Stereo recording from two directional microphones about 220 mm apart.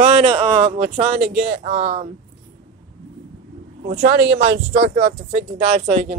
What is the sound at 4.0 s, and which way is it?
Speech, 50° right (ahead or behind).